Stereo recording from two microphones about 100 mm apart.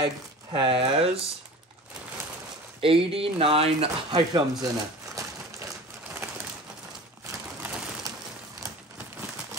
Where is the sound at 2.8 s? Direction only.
70° right (ahead or behind).